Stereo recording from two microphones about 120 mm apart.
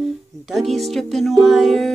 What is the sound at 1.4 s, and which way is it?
Music, centre (ahead or behind).